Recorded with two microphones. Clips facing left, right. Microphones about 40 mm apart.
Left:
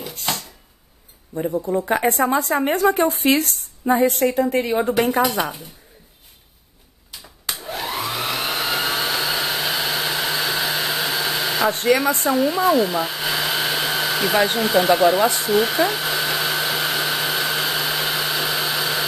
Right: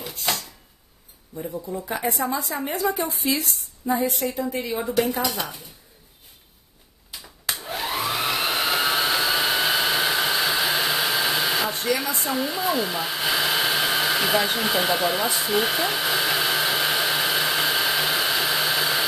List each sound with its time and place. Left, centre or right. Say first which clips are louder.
1.5 s a woman's voice: left 9 dB; left
7.1 s hair dryer: even; centre
11.7 s a woman's voice: left 7 dB; left
12.4 s speech: left 7 dB; centre
15.5 s hair dryer: left 4 dB; centre